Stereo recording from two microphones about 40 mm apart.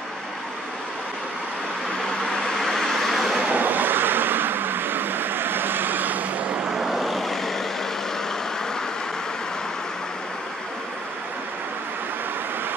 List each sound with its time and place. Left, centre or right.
2.2 s vehicle: centre
3.5 s vehicle: right
6.8 s vehicle: centre